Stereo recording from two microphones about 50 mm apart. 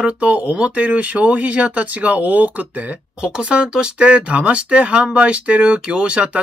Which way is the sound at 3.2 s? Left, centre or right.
Centre.